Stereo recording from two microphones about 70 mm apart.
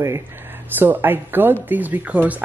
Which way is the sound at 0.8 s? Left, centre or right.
Right.